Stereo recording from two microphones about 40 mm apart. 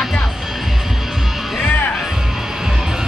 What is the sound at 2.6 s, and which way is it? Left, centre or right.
Music, centre.